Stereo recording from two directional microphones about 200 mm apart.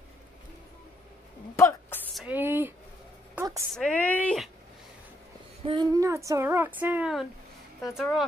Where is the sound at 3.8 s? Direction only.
5° left (ahead or behind).